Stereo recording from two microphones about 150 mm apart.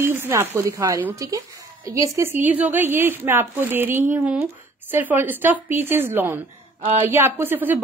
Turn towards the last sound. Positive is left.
turn(degrees=-10)  # may be behind; listen again after turning